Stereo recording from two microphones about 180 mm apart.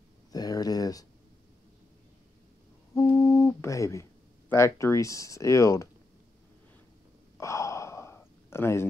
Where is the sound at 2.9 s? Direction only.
20° left (ahead or behind).